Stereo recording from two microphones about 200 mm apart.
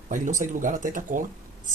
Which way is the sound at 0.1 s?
40° right (ahead or behind).